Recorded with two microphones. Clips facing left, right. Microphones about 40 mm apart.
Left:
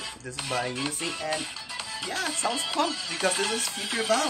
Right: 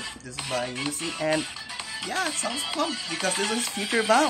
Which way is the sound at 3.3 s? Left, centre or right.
Centre.